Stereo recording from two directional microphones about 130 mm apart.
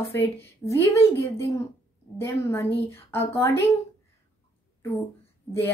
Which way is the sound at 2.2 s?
20° left (ahead or behind).